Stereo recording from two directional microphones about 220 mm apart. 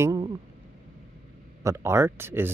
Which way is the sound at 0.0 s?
15° right (ahead or behind).